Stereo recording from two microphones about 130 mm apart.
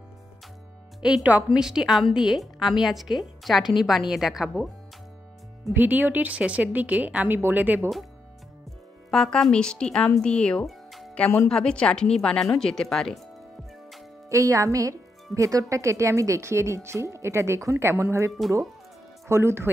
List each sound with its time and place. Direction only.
1.0 s a woman's voice: 10° right (ahead or behind)
5.7 s speech: 15° right (ahead or behind)
9.1 s a woman's voice: 5° left (ahead or behind)
14.3 s a woman's voice: 25° right (ahead or behind)